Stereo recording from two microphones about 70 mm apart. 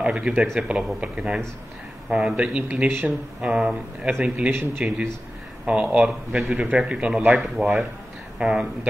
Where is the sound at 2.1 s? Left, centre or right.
Centre.